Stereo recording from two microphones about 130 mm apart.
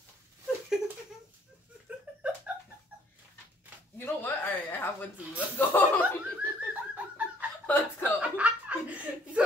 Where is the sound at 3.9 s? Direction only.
15° left (ahead or behind).